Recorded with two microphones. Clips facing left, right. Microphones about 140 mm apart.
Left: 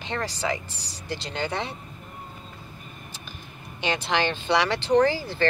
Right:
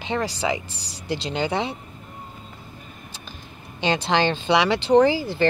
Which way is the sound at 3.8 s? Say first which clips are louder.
Right 4 dB; 30° right (ahead or behind).